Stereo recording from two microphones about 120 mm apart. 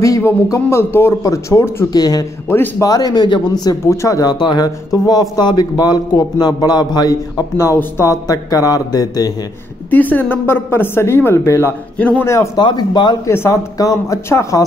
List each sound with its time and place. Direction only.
0.0 s speech: 25° left (ahead or behind)
2.4 s speech: 15° left (ahead or behind)
2.8 s speech: 35° left (ahead or behind)
9.8 s a woman's voice: 15° left (ahead or behind)
12.0 s a man's voice: 10° left (ahead or behind)
12.5 s speech: 40° left (ahead or behind)
13.3 s speech: 25° left (ahead or behind)